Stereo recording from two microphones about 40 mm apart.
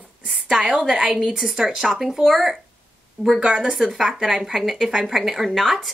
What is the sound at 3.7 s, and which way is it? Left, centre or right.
A woman's voice, centre.